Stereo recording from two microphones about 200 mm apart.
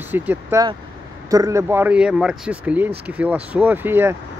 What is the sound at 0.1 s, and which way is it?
Speech, 10° right (ahead or behind).